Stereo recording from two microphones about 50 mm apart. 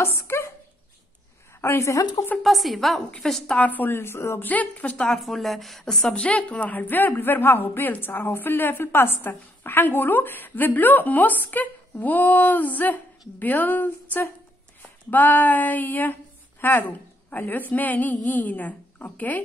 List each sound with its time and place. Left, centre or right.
0.0 s speech: left
1.6 s a woman's voice: left
2.4 s a woman's voice: centre
3.5 s speech: left
4.4 s a woman's voice: left
4.9 s a woman's voice: centre
5.2 s a woman's voice: centre
5.9 s a woman's voice: centre
6.1 s a woman's voice: left
16.6 s speech: left
17.3 s a woman's voice: left